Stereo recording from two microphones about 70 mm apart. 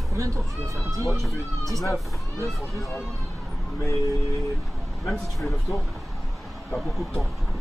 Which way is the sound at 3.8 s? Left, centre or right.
Left.